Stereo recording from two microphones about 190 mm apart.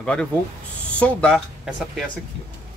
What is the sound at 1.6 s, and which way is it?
Speech, 5° right (ahead or behind).